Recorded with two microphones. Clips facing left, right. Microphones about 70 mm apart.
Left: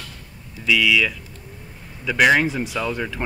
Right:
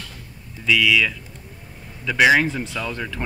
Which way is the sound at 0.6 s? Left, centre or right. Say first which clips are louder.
Even; centre.